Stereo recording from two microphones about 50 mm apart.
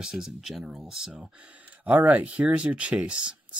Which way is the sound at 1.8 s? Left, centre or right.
Right.